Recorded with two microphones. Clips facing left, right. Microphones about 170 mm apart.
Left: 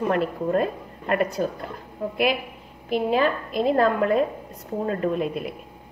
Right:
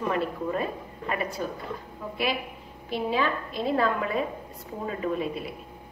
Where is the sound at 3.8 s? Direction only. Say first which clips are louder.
Left 6 dB; 55° left (ahead or behind).